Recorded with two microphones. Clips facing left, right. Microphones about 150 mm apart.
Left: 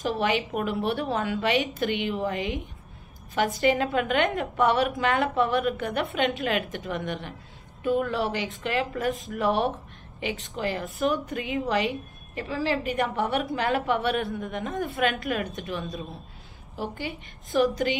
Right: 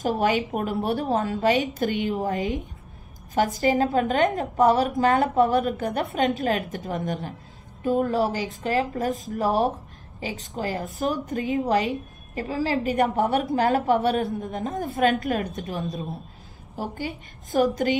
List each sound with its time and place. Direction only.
0.0 s speech: 45° right (ahead or behind)
3.6 s a woman's voice: 40° right (ahead or behind)
14.8 s speech: 40° right (ahead or behind)
15.8 s a woman's voice: 25° right (ahead or behind)
16.7 s speech: 45° right (ahead or behind)